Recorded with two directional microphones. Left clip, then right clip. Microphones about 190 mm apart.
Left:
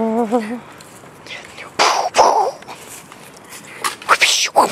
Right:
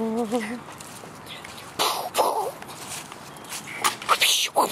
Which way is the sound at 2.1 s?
5° left (ahead or behind).